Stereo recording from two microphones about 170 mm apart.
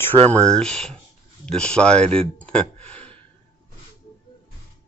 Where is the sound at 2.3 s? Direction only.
5° left (ahead or behind).